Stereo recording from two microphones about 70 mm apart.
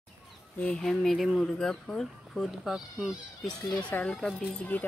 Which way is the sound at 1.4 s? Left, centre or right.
Centre.